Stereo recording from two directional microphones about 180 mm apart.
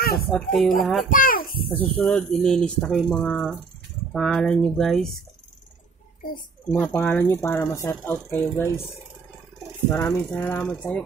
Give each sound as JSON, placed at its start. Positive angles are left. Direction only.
{"t": 0.3, "sound": "speech", "side_deg": 5}
{"t": 1.1, "sound": "a child's voice", "side_deg": 50}
{"t": 1.7, "sound": "speech", "side_deg": 10}
{"t": 6.7, "sound": "speech", "side_deg": 10}
{"t": 9.8, "sound": "speech", "side_deg": 15}